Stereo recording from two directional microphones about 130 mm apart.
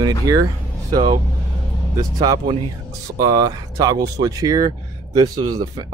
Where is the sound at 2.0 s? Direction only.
30° right (ahead or behind).